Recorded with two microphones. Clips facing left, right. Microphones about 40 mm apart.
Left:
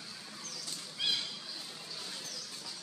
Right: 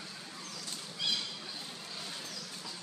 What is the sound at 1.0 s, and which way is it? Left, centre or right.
Squawk, centre.